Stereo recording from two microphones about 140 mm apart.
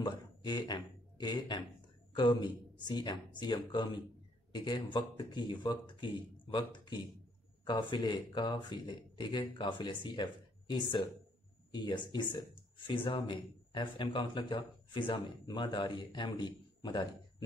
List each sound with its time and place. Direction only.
0.0 s a man's voice: 35° left (ahead or behind)